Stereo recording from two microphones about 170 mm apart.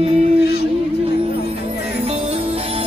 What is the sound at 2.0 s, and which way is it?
Music, 35° right (ahead or behind).